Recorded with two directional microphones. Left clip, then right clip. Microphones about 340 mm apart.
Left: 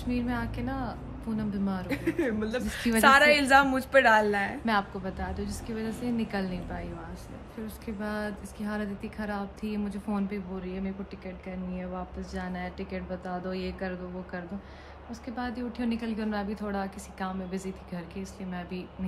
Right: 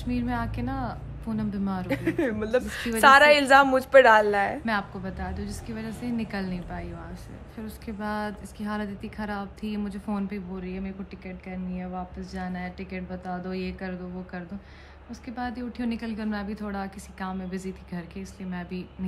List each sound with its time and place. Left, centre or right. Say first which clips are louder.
0.0 s a woman's voice: right 2 dB; centre
1.9 s speech: right 3 dB; right
3.0 s a woman's voice: right 4 dB; centre
4.6 s a woman's voice: even; centre